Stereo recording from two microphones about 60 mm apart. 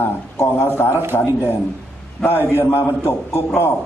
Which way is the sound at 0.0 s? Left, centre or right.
Left.